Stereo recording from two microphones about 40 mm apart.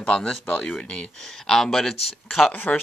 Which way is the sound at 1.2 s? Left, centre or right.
Centre.